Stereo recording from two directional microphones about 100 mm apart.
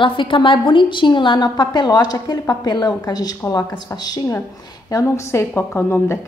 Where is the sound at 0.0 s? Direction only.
55° left (ahead or behind).